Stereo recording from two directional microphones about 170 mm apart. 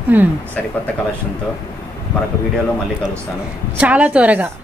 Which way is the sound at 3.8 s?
5° right (ahead or behind).